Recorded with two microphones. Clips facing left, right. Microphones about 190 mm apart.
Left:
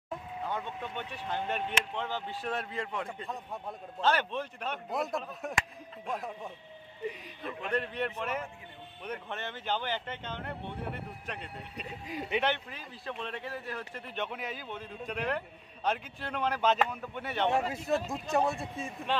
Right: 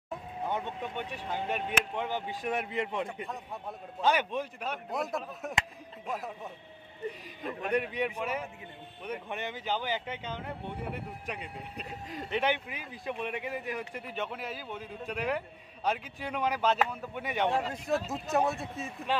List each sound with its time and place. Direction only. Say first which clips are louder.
0.4 s a man's voice: right 3 dB; 20° right (ahead or behind); by 6.5 s centre (ahead or behind)
7.7 s a man's voice: right 2 dB; 10° right (ahead or behind)
12.1 s speech: left 1 dB; 5° left (ahead or behind)
12.4 s a man's voice: right 2 dB; 10° right (ahead or behind)
17.6 s speech: left 1 dB; 5° left (ahead or behind)